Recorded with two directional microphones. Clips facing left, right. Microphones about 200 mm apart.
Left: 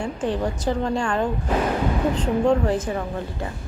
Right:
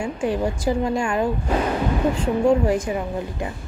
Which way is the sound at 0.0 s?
10° right (ahead or behind).